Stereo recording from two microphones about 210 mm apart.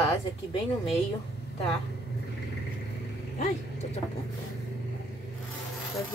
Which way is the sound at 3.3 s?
30° left (ahead or behind).